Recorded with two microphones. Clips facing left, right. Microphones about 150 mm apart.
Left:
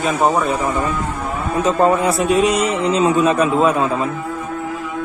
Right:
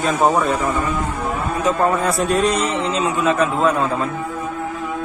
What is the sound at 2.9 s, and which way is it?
A man's voice, 20° left (ahead or behind).